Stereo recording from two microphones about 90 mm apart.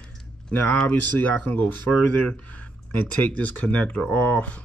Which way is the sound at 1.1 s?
20° left (ahead or behind).